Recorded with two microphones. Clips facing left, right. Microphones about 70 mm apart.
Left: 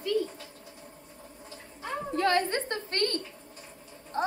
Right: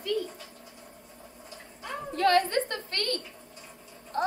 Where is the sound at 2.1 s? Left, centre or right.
Centre.